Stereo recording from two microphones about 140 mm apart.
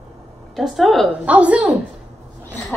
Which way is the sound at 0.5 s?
Centre (ahead or behind).